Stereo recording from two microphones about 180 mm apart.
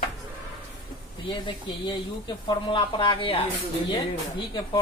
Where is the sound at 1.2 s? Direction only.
25° left (ahead or behind).